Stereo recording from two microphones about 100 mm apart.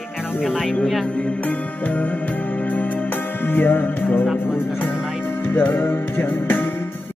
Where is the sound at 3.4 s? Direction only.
20° left (ahead or behind).